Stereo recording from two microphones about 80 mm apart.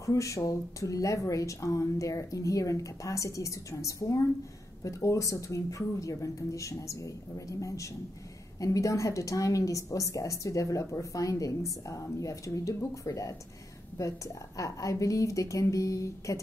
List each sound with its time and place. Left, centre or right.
0.0 s a woman's voice: left